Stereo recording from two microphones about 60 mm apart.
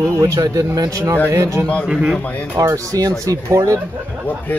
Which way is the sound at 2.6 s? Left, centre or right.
Right.